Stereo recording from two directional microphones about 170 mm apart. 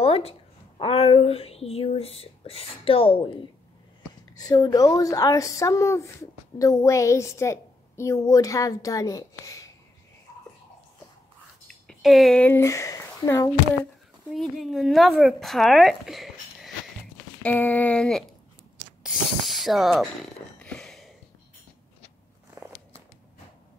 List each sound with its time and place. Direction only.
0.0 s speech: 35° left (ahead or behind)
4.4 s a woman's voice: 20° left (ahead or behind)
11.6 s speech: centre (ahead or behind); by 13.5 s 20° left (ahead or behind)
14.3 s speech: centre (ahead or behind)
17.4 s a sound: 10° left (ahead or behind)
19.0 s speech: centre (ahead or behind)
20.5 s a sound: 5° left (ahead or behind)